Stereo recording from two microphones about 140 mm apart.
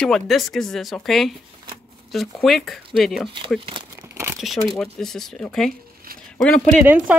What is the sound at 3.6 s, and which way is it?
Speech, 40° right (ahead or behind).